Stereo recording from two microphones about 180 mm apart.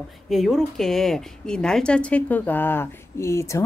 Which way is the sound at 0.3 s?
Centre (ahead or behind).